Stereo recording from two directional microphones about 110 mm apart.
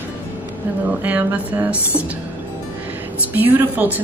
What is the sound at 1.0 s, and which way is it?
A woman's voice, 15° right (ahead or behind).